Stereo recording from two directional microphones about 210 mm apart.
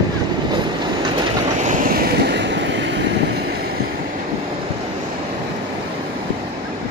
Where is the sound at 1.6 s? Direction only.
40° right (ahead or behind); by 3.0 s 55° right (ahead or behind).